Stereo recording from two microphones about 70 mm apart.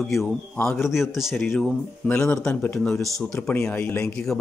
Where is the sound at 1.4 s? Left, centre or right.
Centre.